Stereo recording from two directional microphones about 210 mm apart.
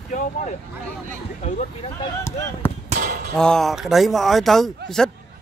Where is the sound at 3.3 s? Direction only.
5° left (ahead or behind).